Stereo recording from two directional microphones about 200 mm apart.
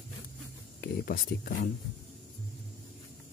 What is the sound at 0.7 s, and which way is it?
Speech, 50° left (ahead or behind).